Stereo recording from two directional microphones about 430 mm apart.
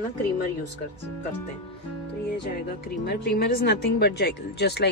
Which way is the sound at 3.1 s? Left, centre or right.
Left.